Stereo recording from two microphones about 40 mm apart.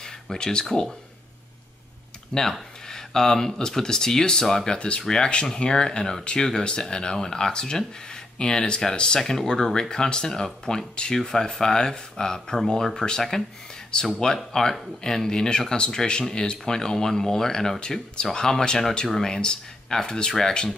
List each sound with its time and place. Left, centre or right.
0.0 s speech: centre
2.3 s speech: left
4.7 s speech: left